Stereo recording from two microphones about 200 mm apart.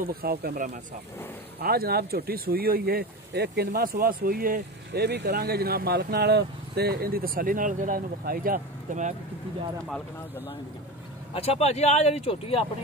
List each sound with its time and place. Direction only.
0.0 s speech: 50° right (ahead or behind)
11.3 s speech: 30° left (ahead or behind)